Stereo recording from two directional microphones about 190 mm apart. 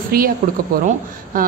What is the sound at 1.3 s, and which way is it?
Speech, 45° right (ahead or behind).